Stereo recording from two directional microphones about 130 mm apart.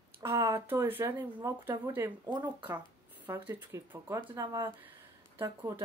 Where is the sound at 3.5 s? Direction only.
20° right (ahead or behind).